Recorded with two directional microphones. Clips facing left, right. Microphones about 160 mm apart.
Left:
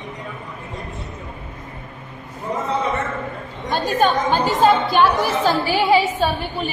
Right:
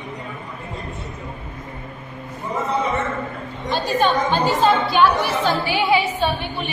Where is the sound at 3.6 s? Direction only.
50° left (ahead or behind).